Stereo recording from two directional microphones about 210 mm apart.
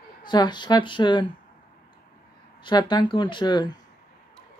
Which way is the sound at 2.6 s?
20° left (ahead or behind).